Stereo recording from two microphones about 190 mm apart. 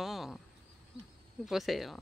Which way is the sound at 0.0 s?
Centre (ahead or behind).